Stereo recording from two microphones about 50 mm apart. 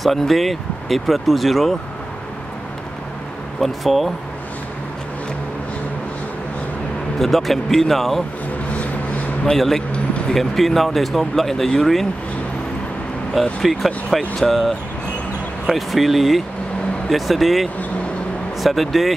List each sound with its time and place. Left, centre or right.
0.0 s speech: centre
3.6 s speech: centre
7.2 s speech: centre
8.7 s vehicle: left
9.5 s speech: centre
9.9 s a sound: left
10.3 s speech: centre
13.3 s speech: centre
15.6 s speech: centre